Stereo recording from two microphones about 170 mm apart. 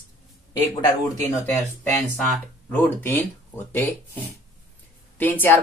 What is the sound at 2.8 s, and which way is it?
Speech, 10° left (ahead or behind).